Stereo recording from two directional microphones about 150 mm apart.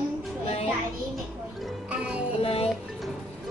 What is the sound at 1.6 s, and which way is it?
Music, 5° right (ahead or behind).